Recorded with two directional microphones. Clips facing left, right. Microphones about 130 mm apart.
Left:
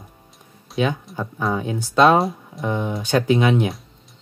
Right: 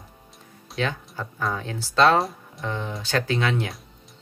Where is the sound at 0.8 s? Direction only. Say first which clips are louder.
Left 6 dB; 15° left (ahead or behind).